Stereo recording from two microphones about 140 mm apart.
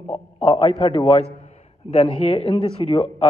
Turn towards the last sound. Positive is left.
turn(degrees=40)  # may be behind; listen again after turning